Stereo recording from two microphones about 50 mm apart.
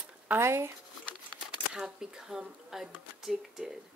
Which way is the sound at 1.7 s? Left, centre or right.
Centre.